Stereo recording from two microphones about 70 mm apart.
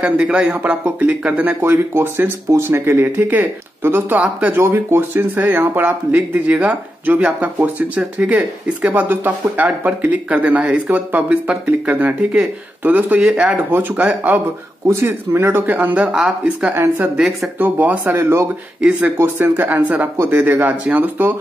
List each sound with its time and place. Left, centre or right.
0.0 s speech: centre
1.6 s speech: right
4.6 s speech: right
13.3 s speech: centre
13.7 s speech: right
14.9 s speech: right
18.8 s speech: centre
19.1 s speech: right